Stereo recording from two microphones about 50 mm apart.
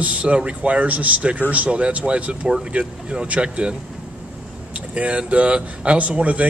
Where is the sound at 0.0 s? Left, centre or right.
Right.